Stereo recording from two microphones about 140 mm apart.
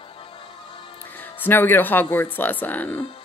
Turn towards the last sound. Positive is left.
turn(degrees=15)  # may be behind; listen again after turning